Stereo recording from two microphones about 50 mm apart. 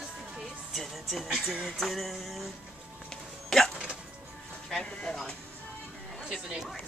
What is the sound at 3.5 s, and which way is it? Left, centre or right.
Music, centre.